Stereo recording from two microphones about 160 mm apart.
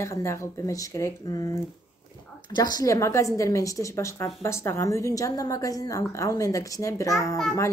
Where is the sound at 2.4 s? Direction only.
25° left (ahead or behind).